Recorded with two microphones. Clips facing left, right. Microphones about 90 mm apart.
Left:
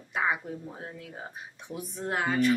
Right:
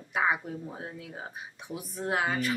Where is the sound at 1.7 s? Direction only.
5° right (ahead or behind).